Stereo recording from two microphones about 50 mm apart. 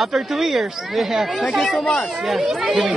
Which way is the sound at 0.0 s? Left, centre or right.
Centre.